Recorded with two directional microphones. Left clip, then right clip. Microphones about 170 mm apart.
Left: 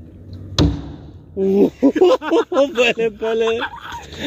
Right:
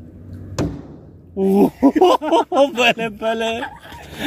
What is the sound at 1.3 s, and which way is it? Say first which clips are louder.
Speech: even; 65° right (ahead or behind).